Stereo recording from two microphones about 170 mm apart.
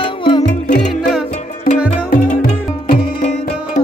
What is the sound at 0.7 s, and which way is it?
Music, 70° left (ahead or behind).